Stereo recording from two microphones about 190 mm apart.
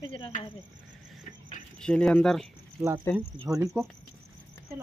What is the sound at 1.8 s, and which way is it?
Speech, 5° left (ahead or behind).